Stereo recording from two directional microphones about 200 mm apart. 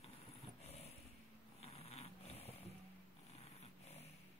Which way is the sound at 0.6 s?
30° left (ahead or behind).